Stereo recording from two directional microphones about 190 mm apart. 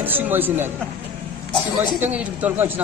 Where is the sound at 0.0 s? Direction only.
10° right (ahead or behind).